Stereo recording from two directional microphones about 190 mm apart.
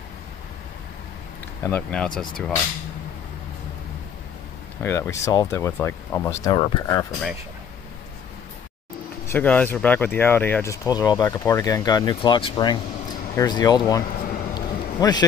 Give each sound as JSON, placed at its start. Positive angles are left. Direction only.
{"t": 1.6, "sound": "speech", "side_deg": 10}
{"t": 4.8, "sound": "speech", "side_deg": 15}
{"t": 9.3, "sound": "speech", "side_deg": 10}
{"t": 14.5, "sound": "a sound", "side_deg": 20}